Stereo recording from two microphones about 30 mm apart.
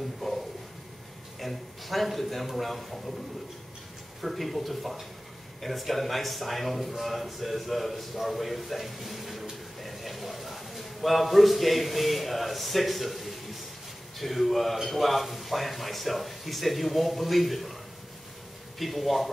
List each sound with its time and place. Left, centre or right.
0.2 s a sound: centre
1.4 s a man's voice: centre
4.2 s a man's voice: centre
18.8 s a man's voice: centre